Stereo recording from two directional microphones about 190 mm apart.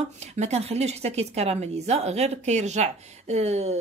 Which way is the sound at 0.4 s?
35° right (ahead or behind).